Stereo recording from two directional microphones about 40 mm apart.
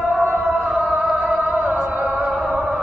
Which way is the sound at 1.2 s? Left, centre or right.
Right.